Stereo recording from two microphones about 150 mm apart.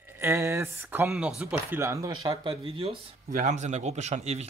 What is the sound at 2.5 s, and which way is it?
Speech, 35° right (ahead or behind).